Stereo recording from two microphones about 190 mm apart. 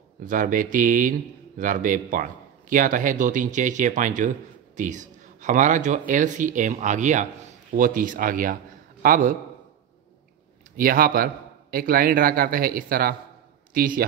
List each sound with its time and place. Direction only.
0.2 s a man's voice: 45° right (ahead or behind)
10.8 s speech: 50° right (ahead or behind)